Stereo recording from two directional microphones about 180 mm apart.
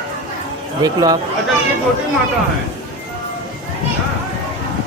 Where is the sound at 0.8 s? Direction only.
20° right (ahead or behind).